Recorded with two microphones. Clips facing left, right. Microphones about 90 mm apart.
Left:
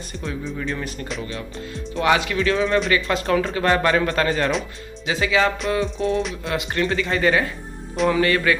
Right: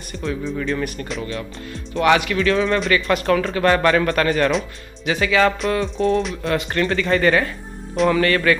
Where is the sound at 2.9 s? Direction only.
20° left (ahead or behind).